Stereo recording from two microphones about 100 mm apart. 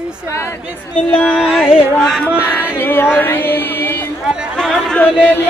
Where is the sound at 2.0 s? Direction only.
5° left (ahead or behind).